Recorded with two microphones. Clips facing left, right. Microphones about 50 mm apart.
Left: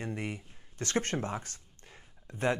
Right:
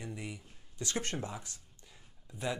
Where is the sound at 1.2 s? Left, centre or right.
Left.